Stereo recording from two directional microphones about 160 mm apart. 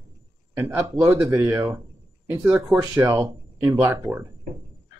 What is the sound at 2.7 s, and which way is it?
Speech, 20° right (ahead or behind).